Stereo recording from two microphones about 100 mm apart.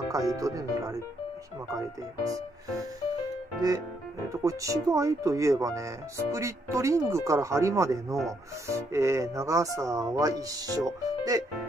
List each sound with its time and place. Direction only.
0.1 s speech: 35° right (ahead or behind)
4.3 s speech: 30° right (ahead or behind)